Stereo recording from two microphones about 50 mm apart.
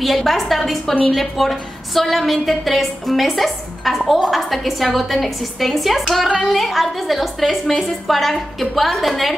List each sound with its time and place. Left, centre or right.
0.0 s a woman's voice: centre